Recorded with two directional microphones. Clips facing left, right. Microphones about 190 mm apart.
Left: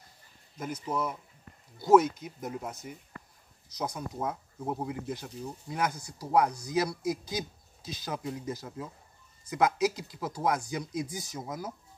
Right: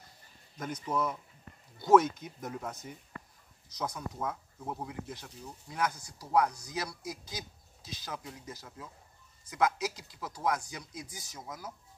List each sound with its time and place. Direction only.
0.6 s speech: 10° left (ahead or behind); by 4.8 s 25° left (ahead or behind)
4.8 s speech: 15° left (ahead or behind)
8.6 s speech: 25° left (ahead or behind)
9.5 s speech: 10° left (ahead or behind)
11.3 s speech: 30° left (ahead or behind)